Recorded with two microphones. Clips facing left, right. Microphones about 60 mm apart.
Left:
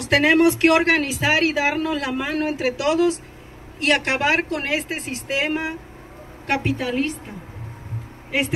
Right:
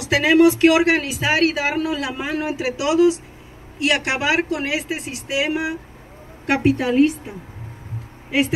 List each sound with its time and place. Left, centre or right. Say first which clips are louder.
0.0 s a woman's voice: right 2 dB; left
6.4 s a woman's voice: right 5 dB; centre